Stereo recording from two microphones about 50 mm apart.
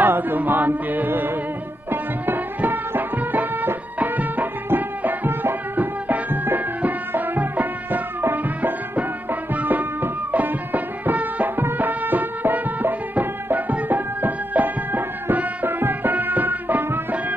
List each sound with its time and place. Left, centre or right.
0.0 s chant: right
1.9 s music: right
8.2 s music: right
8.9 s music: right